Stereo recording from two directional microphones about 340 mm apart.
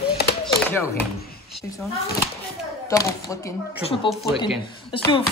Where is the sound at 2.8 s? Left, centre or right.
Centre.